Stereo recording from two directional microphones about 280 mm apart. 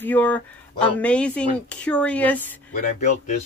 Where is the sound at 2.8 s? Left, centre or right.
Left.